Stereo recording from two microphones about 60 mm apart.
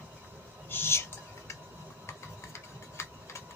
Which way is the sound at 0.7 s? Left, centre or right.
Left.